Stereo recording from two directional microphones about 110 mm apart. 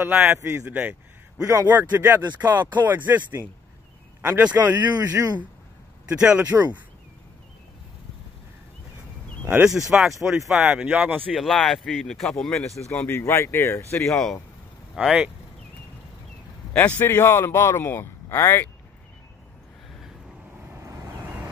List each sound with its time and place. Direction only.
0.0 s speech: 10° right (ahead or behind)
0.3 s speech: 25° right (ahead or behind)
0.7 s speech: 15° right (ahead or behind)
1.4 s speech: 30° right (ahead or behind)
6.5 s speech: 10° right (ahead or behind)
9.4 s speech: 15° right (ahead or behind)
9.8 s speech: 5° right (ahead or behind)
11.3 s speech: centre (ahead or behind)
12.9 s a man's voice: 15° left (ahead or behind)
14.1 s speech: 5° left (ahead or behind)
15.0 s speech: 10° right (ahead or behind)
16.7 s a man's voice: 15° left (ahead or behind)
20.7 s vehicle: 25° right (ahead or behind)